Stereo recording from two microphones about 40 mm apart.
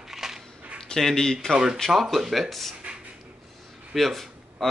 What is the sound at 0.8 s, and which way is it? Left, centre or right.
Speech, centre.